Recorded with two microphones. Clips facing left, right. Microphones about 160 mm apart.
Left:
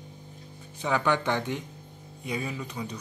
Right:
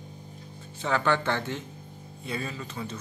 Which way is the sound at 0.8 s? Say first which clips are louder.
Even; 15° left (ahead or behind).